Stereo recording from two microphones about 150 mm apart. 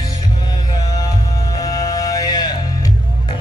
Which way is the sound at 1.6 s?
25° left (ahead or behind).